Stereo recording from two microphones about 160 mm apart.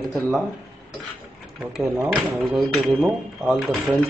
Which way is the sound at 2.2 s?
10° right (ahead or behind).